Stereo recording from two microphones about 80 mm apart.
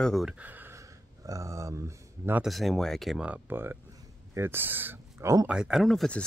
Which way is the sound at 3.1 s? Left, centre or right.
Centre.